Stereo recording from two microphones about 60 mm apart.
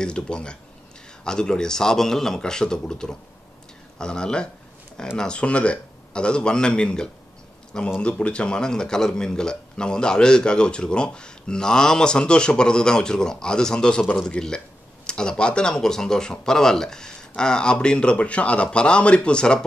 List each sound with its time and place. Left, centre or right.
0.0 s a man's voice: centre